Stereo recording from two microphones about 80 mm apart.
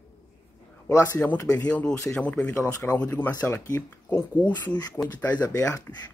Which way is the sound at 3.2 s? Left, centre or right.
Left.